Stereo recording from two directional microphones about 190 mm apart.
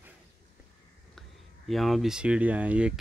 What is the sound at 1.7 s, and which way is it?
Speech, centre (ahead or behind).